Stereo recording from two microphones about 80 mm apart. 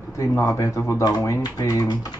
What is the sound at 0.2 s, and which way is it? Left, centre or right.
Speech, left.